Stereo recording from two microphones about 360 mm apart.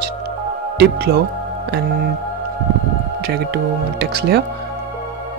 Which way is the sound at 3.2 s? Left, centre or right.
Right.